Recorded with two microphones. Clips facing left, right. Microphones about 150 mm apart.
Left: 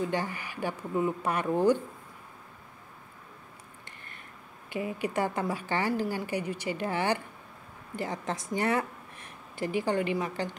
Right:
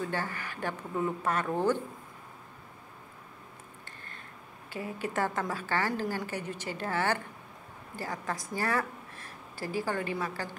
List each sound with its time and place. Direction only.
0.0 s a woman's voice: 15° left (ahead or behind)
4.6 s a woman's voice: 15° left (ahead or behind)